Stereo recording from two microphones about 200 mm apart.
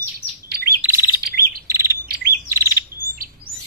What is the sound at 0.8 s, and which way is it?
Bird, 10° right (ahead or behind).